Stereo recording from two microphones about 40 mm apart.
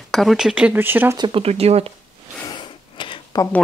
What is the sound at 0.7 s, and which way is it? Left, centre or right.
Speech, right.